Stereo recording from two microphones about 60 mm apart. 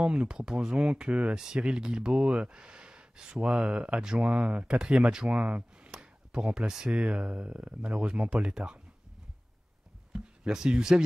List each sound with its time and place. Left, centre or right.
0.0 s speech: centre
10.1 s speech: centre